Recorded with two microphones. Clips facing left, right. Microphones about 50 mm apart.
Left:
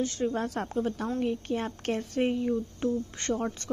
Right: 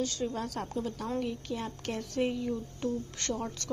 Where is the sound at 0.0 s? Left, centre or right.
Left.